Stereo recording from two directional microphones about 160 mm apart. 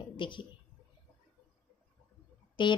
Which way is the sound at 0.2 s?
30° left (ahead or behind).